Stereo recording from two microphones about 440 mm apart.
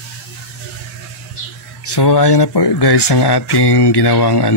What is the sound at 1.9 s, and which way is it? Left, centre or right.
Speech, left.